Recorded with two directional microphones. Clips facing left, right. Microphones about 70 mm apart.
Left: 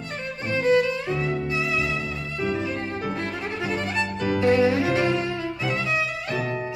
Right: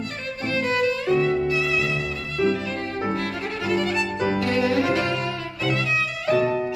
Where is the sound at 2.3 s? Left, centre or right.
Left.